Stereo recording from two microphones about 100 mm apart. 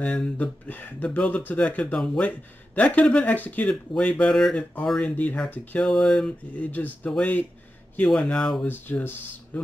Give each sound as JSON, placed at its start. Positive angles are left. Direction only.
{"t": 0.0, "sound": "speech", "side_deg": 15}
{"t": 8.6, "sound": "speech", "side_deg": 20}